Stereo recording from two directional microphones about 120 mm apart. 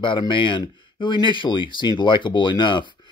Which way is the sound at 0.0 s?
45° left (ahead or behind).